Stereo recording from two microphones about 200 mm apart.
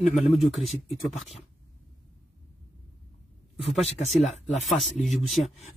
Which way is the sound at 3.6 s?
30° left (ahead or behind).